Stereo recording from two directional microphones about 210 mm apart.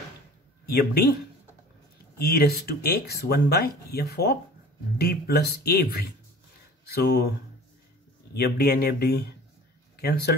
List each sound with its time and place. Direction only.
0.7 s speech: 45° left (ahead or behind)
2.1 s speech: 45° left (ahead or behind)